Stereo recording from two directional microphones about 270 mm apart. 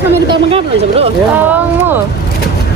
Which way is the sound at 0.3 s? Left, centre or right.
Right.